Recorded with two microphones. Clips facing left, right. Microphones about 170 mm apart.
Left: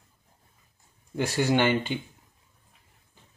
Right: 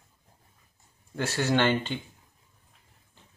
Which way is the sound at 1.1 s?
15° left (ahead or behind).